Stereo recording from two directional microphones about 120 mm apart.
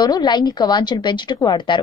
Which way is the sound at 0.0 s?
35° left (ahead or behind).